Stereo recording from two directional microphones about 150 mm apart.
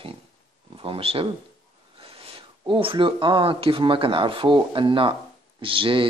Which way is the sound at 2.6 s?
35° right (ahead or behind).